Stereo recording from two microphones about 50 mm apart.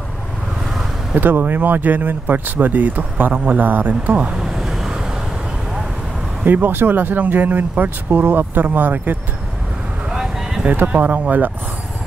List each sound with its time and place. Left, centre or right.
1.1 s speech: right
4.4 s vehicle: centre
6.4 s speech: right
10.0 s a sound: centre
10.9 s speech: right